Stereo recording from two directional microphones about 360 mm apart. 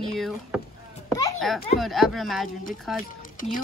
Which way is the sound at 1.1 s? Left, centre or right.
Centre.